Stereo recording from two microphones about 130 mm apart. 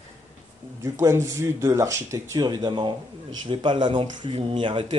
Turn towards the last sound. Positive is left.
turn(degrees=-35)  # may be behind; listen again after turning